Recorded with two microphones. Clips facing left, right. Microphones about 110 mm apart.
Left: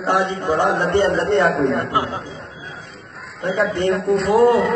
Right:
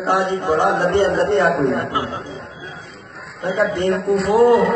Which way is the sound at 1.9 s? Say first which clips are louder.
Left 2 dB; 30° left (ahead or behind).